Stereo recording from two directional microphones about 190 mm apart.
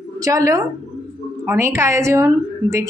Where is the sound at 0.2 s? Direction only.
15° right (ahead or behind).